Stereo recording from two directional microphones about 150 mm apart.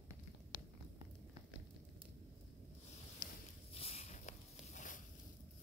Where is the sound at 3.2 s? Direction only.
75° left (ahead or behind).